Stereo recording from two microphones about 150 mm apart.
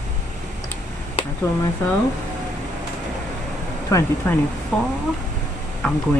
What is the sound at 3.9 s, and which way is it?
Speech, 25° left (ahead or behind).